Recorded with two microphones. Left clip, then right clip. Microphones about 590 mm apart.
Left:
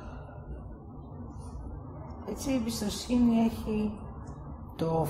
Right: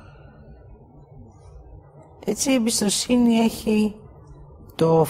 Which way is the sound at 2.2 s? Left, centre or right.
Right.